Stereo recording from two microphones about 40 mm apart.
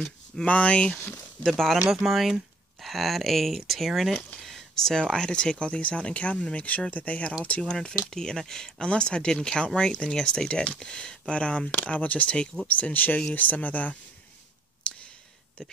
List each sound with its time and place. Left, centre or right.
0.5 s speech: left
1.4 s speech: centre
4.4 s a sound: centre
4.9 s speech: centre
7.7 s speech: centre; by 13.9 s left
14.8 s a sound: left